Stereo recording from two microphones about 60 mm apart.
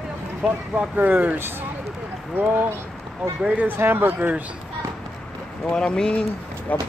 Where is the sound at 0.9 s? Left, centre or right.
Right.